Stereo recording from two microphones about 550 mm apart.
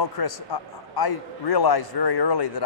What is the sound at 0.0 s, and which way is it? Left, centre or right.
A man's voice, left.